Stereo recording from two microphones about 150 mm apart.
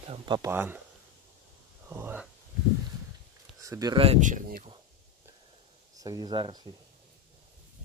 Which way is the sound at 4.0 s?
50° right (ahead or behind).